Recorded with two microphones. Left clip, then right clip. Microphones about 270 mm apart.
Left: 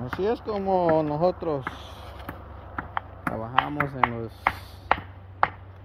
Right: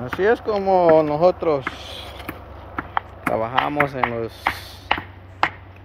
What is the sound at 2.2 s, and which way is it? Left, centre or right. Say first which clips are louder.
Chop: right 5 dB; centre.